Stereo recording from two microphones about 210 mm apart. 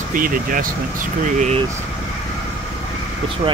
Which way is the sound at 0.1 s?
40° right (ahead or behind).